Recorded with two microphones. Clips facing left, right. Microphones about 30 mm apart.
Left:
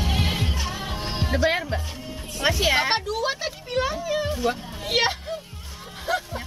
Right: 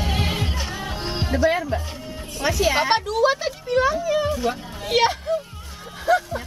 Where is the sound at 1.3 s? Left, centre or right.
Left.